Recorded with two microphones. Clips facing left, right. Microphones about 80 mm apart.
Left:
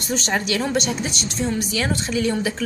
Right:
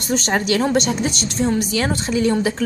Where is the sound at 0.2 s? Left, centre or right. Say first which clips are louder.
Right 4 dB; right.